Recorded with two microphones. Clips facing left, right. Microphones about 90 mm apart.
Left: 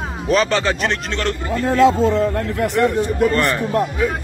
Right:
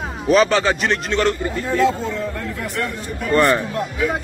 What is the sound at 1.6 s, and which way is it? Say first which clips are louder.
Speech: left 6 dB; 90° left.